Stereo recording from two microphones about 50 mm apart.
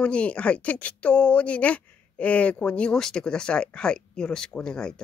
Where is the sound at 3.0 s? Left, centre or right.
Centre.